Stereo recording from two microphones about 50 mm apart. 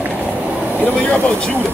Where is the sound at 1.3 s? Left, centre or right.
Centre.